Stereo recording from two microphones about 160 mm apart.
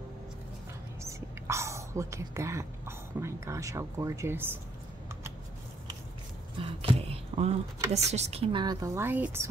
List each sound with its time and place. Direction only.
1.0 s whispering: 20° right (ahead or behind)
3.2 s speech: 20° right (ahead or behind)
6.6 s a sound: 35° right (ahead or behind)
7.9 s speech: 45° right (ahead or behind); by 9.5 s 15° right (ahead or behind)